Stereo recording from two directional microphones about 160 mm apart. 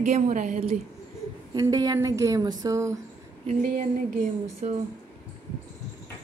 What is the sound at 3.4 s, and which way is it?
A woman's voice, 50° right (ahead or behind).